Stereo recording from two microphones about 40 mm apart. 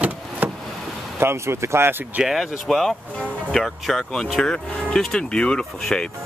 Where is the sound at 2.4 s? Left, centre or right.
Centre.